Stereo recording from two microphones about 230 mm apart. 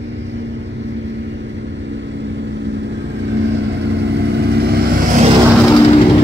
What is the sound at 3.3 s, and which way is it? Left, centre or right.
Vehicle, right.